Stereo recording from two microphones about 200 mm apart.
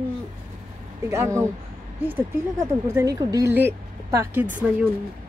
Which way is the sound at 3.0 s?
20° right (ahead or behind).